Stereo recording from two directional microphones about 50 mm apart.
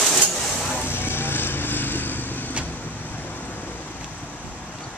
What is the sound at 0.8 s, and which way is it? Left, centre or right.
Vehicle, left.